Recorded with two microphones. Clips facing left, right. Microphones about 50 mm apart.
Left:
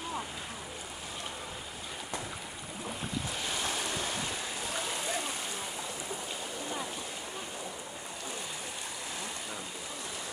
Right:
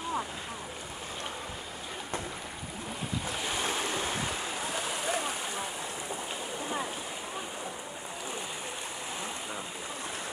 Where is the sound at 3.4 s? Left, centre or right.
Right.